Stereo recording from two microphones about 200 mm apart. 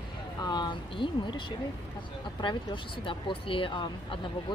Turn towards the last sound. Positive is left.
turn(degrees=25)  # may be behind; listen again after turning